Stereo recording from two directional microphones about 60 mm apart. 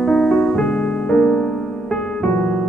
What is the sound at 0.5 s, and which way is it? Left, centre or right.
Music, centre.